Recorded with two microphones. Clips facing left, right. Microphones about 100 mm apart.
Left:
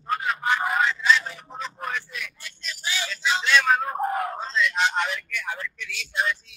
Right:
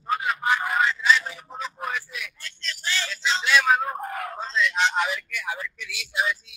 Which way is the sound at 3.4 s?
5° right (ahead or behind).